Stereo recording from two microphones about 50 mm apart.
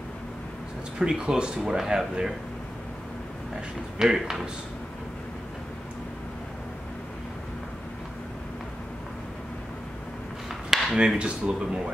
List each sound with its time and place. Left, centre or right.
0.9 s speech: centre
4.0 s speech: centre
10.7 s a sound: centre
11.0 s speech: centre